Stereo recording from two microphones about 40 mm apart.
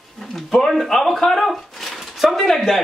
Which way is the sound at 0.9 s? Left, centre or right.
Centre.